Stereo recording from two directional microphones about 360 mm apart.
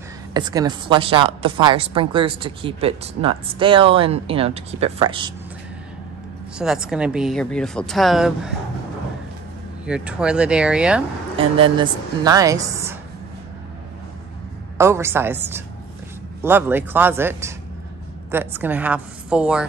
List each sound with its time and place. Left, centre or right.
0.3 s speech: centre
6.6 s speech: centre
9.8 s speech: centre
11.3 s speech: centre
14.8 s speech: centre